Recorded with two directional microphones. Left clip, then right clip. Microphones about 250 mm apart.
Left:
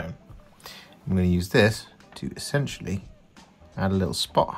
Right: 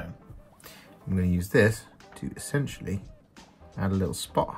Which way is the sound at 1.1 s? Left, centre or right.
Centre.